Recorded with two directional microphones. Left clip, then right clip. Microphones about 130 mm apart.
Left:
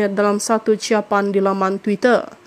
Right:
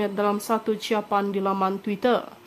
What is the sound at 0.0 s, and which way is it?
A woman's voice, 40° left (ahead or behind).